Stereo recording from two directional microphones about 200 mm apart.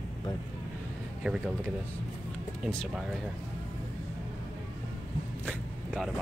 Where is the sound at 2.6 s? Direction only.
Centre (ahead or behind).